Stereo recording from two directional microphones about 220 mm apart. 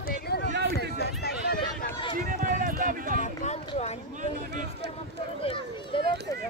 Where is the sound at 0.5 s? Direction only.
50° right (ahead or behind).